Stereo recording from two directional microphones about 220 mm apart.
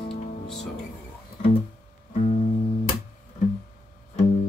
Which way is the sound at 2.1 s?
30° left (ahead or behind).